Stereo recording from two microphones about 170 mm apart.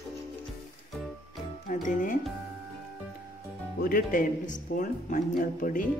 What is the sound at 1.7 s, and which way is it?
Speech, 50° left (ahead or behind).